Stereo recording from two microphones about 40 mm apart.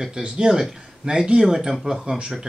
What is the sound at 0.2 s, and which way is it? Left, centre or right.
Speech, right.